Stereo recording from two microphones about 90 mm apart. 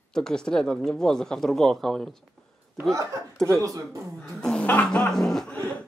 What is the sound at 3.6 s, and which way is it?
Speech, 40° right (ahead or behind).